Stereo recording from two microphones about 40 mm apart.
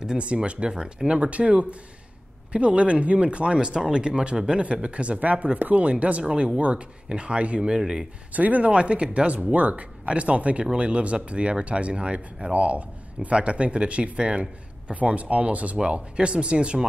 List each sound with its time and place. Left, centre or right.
0.0 s speech: right
6.2 s speech: right
8.3 s speech: right